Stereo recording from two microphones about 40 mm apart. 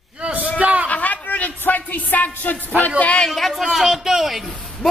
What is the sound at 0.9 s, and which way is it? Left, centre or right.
Music, left.